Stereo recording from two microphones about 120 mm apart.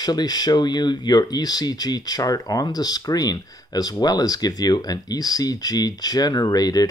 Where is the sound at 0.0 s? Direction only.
35° left (ahead or behind).